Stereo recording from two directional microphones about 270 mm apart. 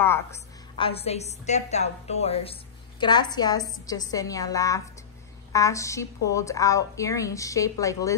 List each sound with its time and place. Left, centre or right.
0.0 s a woman's voice: centre